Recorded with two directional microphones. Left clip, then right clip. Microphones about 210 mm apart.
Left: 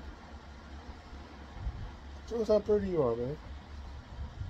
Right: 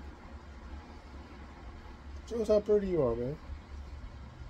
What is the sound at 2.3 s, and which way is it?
Speech, 15° right (ahead or behind).